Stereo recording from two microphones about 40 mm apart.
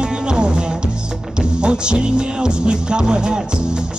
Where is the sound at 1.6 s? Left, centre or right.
Right.